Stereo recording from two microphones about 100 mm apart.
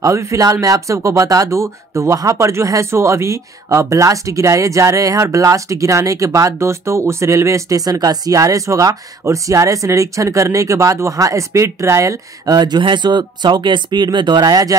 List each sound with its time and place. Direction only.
0.0 s speech: 30° right (ahead or behind)